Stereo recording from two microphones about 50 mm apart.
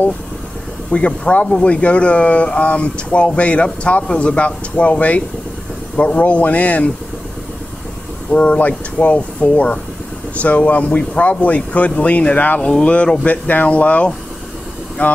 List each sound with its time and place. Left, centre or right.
0.9 s speech: left
8.3 s speech: left